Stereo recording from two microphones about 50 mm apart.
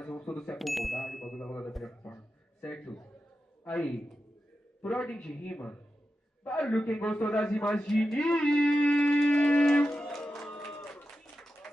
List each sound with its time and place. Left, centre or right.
0.0 s speech: centre
0.6 s ding: centre
1.7 s a sound: centre
2.6 s a man's voice: centre
4.8 s music: left
7.8 s speech: centre
8.2 s music: left
10.1 s music: centre